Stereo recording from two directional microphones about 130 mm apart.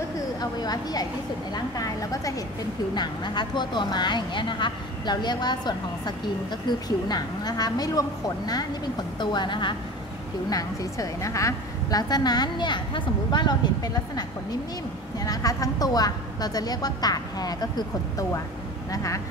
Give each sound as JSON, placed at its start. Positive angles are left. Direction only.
{"t": 0.4, "sound": "a woman's voice", "side_deg": 30}
{"t": 9.2, "sound": "a woman's voice", "side_deg": 35}